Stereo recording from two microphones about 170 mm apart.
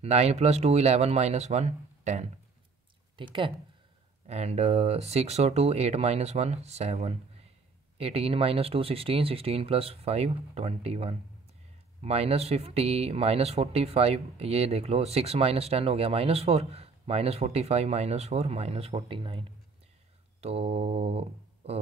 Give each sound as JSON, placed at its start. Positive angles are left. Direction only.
{"t": 0.0, "sound": "speech", "side_deg": -40}
{"t": 3.2, "sound": "speech", "side_deg": -30}